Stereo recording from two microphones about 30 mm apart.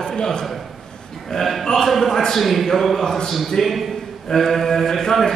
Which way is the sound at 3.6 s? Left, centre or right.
Centre.